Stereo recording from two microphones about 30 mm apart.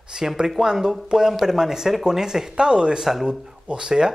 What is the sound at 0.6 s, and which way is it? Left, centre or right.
Speech, centre.